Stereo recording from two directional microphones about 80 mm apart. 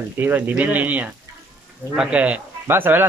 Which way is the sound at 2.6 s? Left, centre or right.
Right.